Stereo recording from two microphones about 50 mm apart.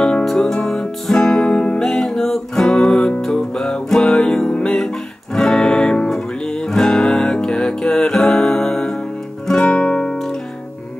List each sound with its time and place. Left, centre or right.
0.4 s music: centre
1.8 s music: centre
9.6 s music: left